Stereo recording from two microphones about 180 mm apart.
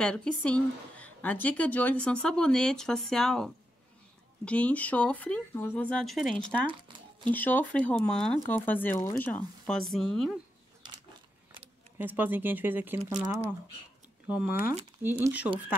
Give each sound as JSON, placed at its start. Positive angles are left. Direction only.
{"t": 0.0, "sound": "a woman's voice", "side_deg": 5}
{"t": 6.3, "sound": "speech", "side_deg": -25}
{"t": 7.2, "sound": "speech", "side_deg": 10}
{"t": 8.9, "sound": "speech", "side_deg": 45}
{"t": 9.2, "sound": "a woman's voice", "side_deg": 5}
{"t": 12.0, "sound": "speech", "side_deg": -10}
{"t": 14.2, "sound": "speech", "side_deg": -10}